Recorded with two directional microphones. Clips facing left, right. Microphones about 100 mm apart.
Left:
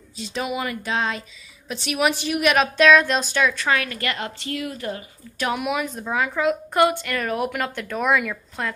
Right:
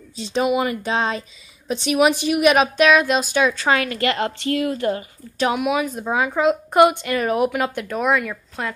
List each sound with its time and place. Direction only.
0.1 s a woman's voice: 25° right (ahead or behind)
3.5 s a woman's voice: 30° right (ahead or behind)
5.8 s a woman's voice: 10° right (ahead or behind)